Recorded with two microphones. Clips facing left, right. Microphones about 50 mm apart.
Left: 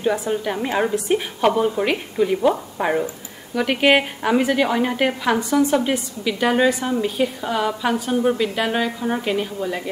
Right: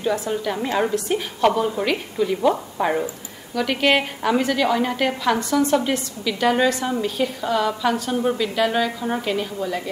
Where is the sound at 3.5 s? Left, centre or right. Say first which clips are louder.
Left 2 dB; centre.